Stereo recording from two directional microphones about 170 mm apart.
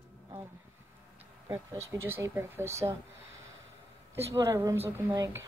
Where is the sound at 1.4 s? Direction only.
20° right (ahead or behind).